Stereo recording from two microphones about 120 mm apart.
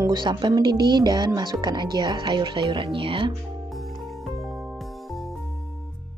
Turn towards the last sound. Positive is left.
turn(degrees=0)  # may be behind; listen again after turning